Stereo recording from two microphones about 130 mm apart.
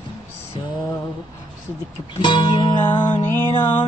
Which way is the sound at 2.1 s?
35° left (ahead or behind).